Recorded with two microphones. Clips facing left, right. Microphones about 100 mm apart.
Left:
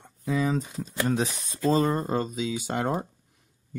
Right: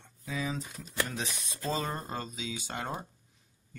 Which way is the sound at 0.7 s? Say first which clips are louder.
Left 9 dB; 35° left (ahead or behind).